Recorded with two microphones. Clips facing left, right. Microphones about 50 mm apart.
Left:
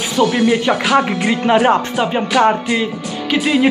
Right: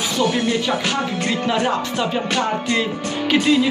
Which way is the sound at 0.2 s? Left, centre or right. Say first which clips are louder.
Left 6 dB; left.